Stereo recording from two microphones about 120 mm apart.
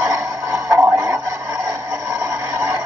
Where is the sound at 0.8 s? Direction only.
25° right (ahead or behind).